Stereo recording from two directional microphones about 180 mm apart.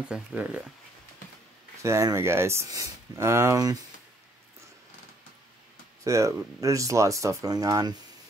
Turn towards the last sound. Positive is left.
turn(degrees=-20)  # may be behind; listen again after turning